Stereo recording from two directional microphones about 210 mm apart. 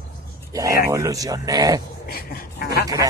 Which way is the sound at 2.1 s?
45° left (ahead or behind).